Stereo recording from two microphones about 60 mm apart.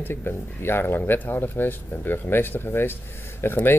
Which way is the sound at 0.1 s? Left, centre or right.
Left.